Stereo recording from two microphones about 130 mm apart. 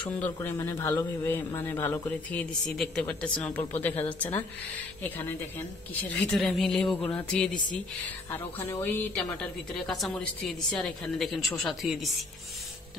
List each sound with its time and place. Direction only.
0.2 s speech: 15° left (ahead or behind)
2.7 s speech: 5° left (ahead or behind)
6.3 s a woman's voice: 5° left (ahead or behind)
8.8 s a woman's voice: 10° left (ahead or behind)